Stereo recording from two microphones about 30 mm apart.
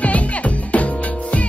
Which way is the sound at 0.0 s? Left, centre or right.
Left.